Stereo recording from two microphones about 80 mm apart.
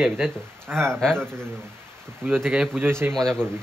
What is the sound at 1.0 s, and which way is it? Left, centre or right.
Speech, centre.